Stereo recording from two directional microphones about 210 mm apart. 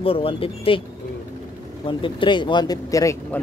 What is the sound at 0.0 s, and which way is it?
Speech, 25° left (ahead or behind).